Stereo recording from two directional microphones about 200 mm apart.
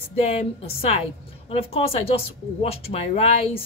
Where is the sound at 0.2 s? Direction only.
30° left (ahead or behind).